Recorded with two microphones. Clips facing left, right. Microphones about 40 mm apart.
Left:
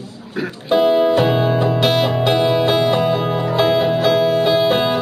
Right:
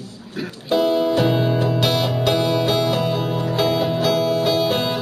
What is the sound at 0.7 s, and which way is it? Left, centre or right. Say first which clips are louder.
Speech: left 4 dB; left.